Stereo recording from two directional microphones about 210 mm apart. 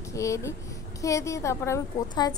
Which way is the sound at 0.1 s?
15° left (ahead or behind).